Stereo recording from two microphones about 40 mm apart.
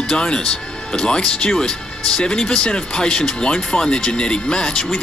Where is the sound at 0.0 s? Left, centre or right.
Left.